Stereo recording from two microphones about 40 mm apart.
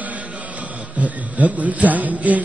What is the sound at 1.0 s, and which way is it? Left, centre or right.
A man's voice, right.